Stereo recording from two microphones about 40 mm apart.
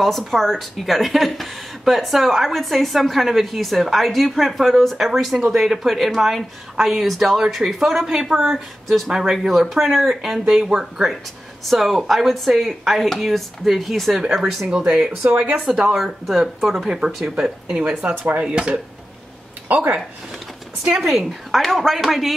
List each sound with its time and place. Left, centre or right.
0.0 s a woman's voice: centre
11.6 s a woman's voice: centre
14.7 s speech: right
19.7 s speech: right
20.8 s speech: centre
21.5 s a woman's voice: centre